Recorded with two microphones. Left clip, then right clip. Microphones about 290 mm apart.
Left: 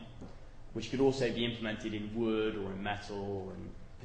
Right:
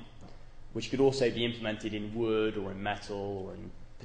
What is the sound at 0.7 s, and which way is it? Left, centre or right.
A man's voice, right.